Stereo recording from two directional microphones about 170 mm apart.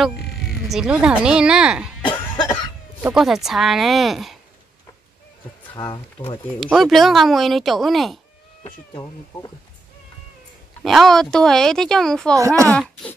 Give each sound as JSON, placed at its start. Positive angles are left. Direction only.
{"t": 0.0, "sound": "speech", "side_deg": 0}
{"t": 2.0, "sound": "cough", "side_deg": 25}
{"t": 3.0, "sound": "speech", "side_deg": -5}
{"t": 5.8, "sound": "speech", "side_deg": 30}
{"t": 6.6, "sound": "speech", "side_deg": 0}
{"t": 10.8, "sound": "speech", "side_deg": 0}
{"t": 12.4, "sound": "speech", "side_deg": -20}